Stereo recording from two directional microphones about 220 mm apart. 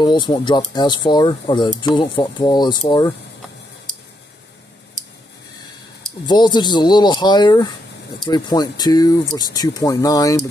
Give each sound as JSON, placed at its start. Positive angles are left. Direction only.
{"t": 0.0, "sound": "speech", "side_deg": 20}
{"t": 6.2, "sound": "speech", "side_deg": 20}